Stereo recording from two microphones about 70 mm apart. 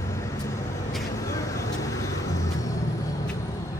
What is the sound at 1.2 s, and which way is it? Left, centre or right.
Vehicle, left.